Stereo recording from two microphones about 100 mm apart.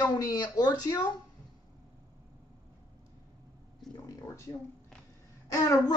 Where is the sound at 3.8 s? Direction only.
Centre (ahead or behind).